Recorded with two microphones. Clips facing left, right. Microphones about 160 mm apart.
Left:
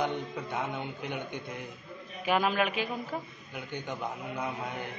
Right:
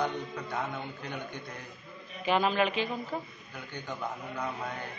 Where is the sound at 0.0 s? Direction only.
20° left (ahead or behind).